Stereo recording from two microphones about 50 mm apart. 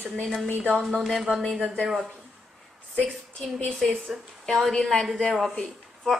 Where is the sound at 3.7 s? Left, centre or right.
Centre.